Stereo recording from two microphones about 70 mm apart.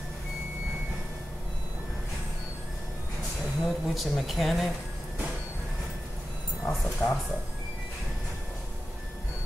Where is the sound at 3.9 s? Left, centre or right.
Centre.